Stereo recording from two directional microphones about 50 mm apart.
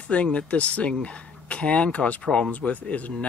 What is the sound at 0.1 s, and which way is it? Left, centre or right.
Speech, left.